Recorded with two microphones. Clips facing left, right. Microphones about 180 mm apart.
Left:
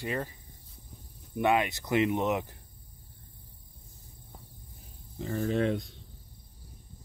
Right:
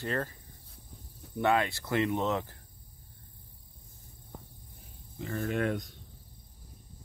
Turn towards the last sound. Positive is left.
turn(degrees=25)  # may be behind; listen again after turning